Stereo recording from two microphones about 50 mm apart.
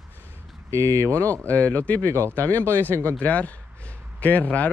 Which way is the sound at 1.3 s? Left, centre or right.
Left.